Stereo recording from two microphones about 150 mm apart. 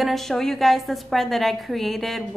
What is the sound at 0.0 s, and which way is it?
A woman's voice, centre (ahead or behind).